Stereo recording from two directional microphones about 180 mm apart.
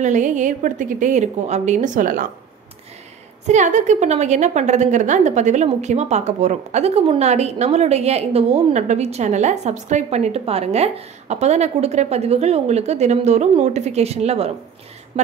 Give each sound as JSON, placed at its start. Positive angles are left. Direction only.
{"t": 0.0, "sound": "a woman's voice", "side_deg": -45}
{"t": 3.4, "sound": "a woman's voice", "side_deg": -40}